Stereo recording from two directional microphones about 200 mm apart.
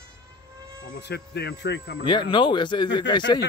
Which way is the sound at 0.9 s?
55° left (ahead or behind).